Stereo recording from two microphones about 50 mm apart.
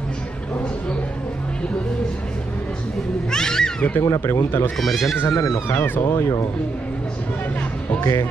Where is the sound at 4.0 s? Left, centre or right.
Left.